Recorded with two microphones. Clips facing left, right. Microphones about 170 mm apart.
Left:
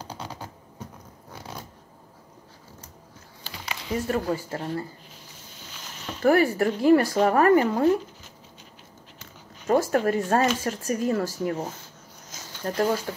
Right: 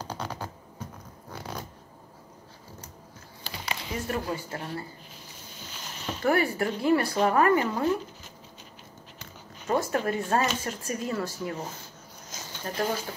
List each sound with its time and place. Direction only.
4.1 s speech: 35° left (ahead or behind)
6.2 s speech: 40° left (ahead or behind)
9.7 s speech: 45° left (ahead or behind)
12.6 s speech: 45° left (ahead or behind)